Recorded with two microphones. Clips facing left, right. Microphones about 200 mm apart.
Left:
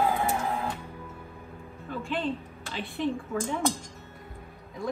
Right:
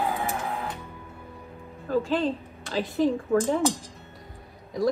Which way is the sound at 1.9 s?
40° right (ahead or behind).